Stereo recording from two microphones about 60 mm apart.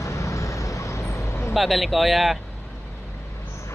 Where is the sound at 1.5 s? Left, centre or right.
Centre.